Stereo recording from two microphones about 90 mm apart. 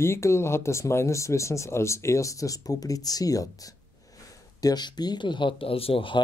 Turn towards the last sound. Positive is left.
turn(degrees=80)